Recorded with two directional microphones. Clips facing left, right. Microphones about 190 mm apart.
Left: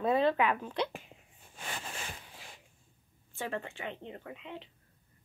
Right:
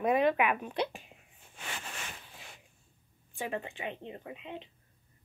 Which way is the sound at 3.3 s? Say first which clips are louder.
Right 1 dB; 15° right (ahead or behind).